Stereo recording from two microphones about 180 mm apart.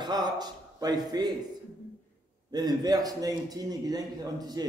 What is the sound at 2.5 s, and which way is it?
A man's voice, 20° right (ahead or behind).